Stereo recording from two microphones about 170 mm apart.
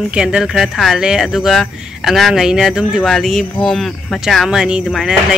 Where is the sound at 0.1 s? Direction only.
5° right (ahead or behind).